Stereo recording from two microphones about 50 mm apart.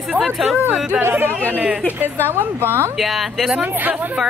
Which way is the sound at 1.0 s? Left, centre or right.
Right.